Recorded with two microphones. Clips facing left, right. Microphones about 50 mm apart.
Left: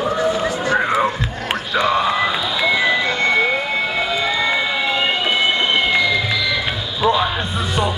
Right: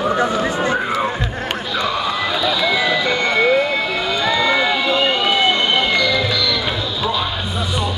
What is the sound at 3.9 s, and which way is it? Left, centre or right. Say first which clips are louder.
Vehicle: right 1 dB; centre.